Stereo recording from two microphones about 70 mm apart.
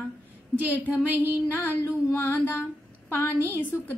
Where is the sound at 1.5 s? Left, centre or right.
Left.